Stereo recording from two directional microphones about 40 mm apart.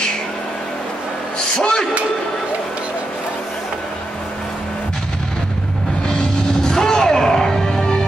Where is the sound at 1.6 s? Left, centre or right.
Left.